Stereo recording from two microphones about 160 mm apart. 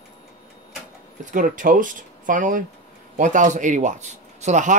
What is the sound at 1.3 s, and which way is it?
Speech, 55° right (ahead or behind).